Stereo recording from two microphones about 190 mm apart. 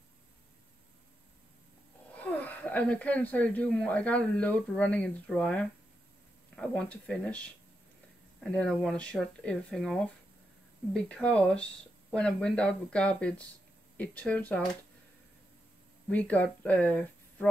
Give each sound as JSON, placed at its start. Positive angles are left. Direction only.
{"t": 2.1, "sound": "speech", "side_deg": 10}
{"t": 16.1, "sound": "speech", "side_deg": 5}